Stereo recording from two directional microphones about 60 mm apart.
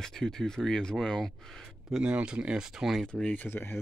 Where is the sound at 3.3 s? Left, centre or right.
Left.